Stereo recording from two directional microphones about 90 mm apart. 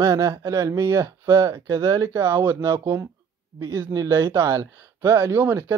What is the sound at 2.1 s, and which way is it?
Speech, 30° right (ahead or behind).